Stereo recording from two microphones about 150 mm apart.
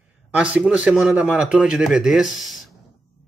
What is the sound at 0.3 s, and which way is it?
Speech, 10° right (ahead or behind).